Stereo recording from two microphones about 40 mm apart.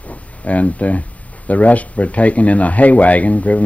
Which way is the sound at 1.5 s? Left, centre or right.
Left.